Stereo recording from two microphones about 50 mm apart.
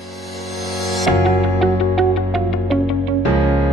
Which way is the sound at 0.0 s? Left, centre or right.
Centre.